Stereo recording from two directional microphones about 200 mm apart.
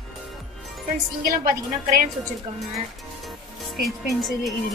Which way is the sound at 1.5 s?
40° right (ahead or behind).